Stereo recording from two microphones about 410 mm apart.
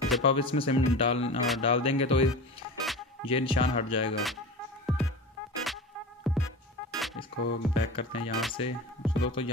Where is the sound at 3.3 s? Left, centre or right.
Centre.